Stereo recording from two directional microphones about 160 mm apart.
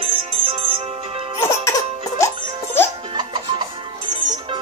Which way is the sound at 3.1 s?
30° right (ahead or behind).